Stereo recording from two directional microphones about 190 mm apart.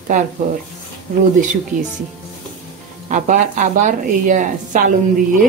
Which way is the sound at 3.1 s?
40° right (ahead or behind).